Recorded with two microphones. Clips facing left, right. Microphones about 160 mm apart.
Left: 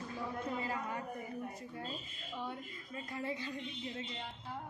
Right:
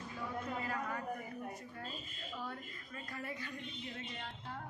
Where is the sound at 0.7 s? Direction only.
20° left (ahead or behind).